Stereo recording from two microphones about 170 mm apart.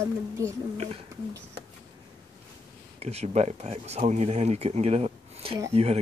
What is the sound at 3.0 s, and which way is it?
Speech, 40° right (ahead or behind).